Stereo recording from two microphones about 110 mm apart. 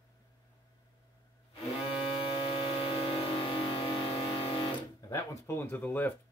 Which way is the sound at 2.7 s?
65° left (ahead or behind).